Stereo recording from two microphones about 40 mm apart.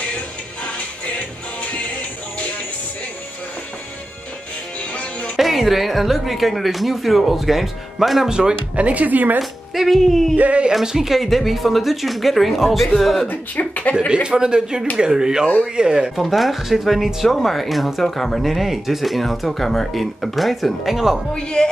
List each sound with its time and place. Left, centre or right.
1.6 s music: left
5.4 s a woman's voice: centre
8.3 s a man's voice: centre
8.7 s speech: right
9.4 s a woman's voice: centre
10.3 s speech: right
10.7 s speech: centre
11.1 s a woman's voice: centre
13.3 s speech: left
13.9 s a man's voice: right
16.2 s a woman's voice: centre
21.3 s speech: centre